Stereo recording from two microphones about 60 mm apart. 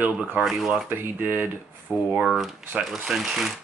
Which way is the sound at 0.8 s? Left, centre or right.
Right.